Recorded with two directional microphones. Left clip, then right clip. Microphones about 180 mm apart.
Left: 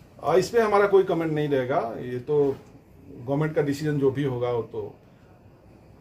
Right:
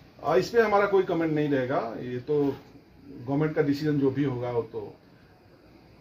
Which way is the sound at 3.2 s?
15° left (ahead or behind).